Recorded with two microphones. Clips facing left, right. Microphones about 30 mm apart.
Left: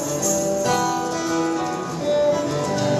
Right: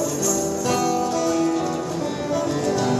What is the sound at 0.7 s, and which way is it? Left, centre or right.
Music, centre.